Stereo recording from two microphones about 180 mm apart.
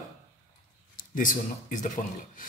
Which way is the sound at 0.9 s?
50° left (ahead or behind).